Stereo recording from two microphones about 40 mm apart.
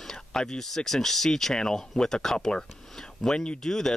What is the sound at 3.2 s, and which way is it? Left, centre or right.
Speech, left.